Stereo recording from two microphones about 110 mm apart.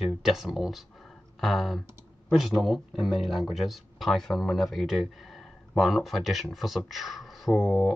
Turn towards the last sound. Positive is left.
turn(degrees=0)  # may be behind; listen again after turning